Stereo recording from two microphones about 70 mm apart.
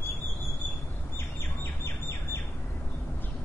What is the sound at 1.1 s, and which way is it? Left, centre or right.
Bird, left.